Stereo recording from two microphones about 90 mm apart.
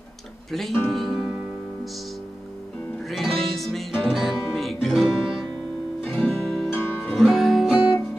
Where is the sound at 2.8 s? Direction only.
15° left (ahead or behind).